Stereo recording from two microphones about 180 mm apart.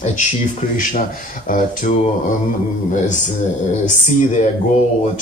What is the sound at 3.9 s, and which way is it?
Speech, 45° left (ahead or behind).